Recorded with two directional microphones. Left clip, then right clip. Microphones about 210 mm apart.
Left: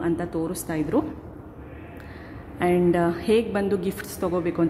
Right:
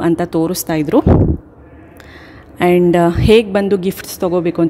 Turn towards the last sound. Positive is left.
turn(degrees=-30)  # may be behind; listen again after turning